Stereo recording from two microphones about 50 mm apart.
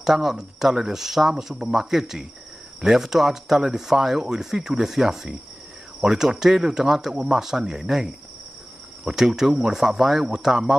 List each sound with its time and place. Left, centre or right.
0.0 s speech: centre